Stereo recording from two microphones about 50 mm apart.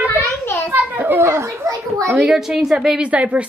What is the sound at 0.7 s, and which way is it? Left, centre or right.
Children playing, right.